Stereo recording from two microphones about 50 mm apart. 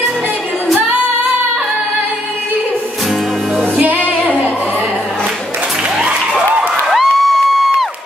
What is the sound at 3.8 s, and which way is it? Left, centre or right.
Music, right.